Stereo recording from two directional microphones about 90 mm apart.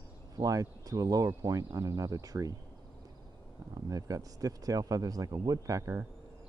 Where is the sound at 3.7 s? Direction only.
40° right (ahead or behind).